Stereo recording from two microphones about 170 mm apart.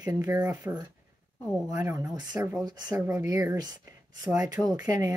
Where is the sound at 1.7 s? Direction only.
20° right (ahead or behind).